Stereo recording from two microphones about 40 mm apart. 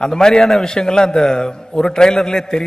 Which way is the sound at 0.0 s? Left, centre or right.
Centre.